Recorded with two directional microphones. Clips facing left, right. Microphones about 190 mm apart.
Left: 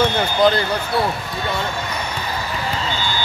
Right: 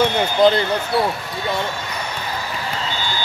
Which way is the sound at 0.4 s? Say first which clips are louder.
Right 2 dB; 25° right (ahead or behind).